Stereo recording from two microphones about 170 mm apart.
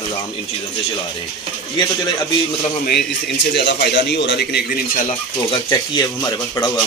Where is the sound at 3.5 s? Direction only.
75° left (ahead or behind).